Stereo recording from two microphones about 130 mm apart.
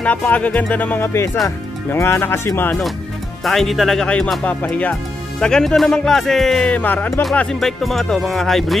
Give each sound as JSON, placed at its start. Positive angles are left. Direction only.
{"t": 0.0, "sound": "speech", "side_deg": 10}
{"t": 3.4, "sound": "speech", "side_deg": 0}